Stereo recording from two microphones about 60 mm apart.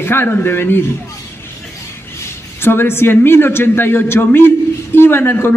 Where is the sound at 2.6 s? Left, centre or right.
Left.